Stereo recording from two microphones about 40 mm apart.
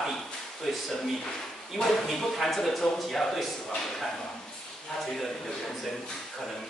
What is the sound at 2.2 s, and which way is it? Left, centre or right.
Speech, centre.